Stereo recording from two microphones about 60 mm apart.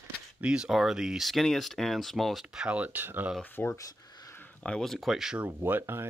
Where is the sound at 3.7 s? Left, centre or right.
Left.